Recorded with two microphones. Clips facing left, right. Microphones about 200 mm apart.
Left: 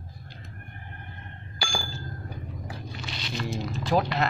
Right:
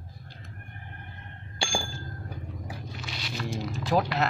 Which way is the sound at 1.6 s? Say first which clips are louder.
Right 2 dB; 25° right (ahead or behind).